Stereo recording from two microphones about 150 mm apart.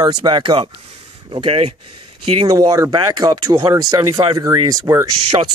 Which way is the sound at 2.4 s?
25° right (ahead or behind).